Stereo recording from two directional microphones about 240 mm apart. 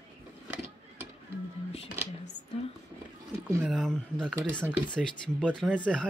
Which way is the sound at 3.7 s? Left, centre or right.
Centre.